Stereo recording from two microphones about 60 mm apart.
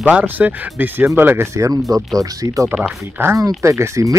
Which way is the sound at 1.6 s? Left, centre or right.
Right.